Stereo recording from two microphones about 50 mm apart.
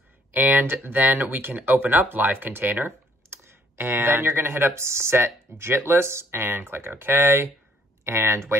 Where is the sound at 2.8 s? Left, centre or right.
Right.